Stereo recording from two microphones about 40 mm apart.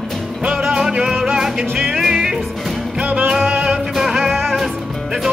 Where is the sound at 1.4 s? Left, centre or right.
Centre.